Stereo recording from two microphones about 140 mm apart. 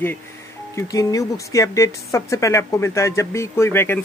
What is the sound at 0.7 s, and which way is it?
Speech, 25° left (ahead or behind).